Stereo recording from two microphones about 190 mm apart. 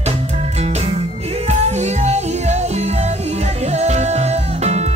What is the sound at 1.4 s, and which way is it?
Music, 35° right (ahead or behind).